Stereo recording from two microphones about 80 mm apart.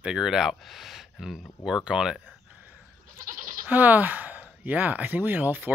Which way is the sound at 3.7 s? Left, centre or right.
Right.